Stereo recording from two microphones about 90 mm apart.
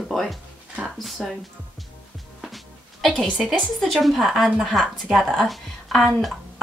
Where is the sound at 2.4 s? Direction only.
Centre (ahead or behind).